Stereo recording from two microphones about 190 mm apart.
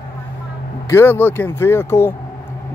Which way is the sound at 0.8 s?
10° left (ahead or behind).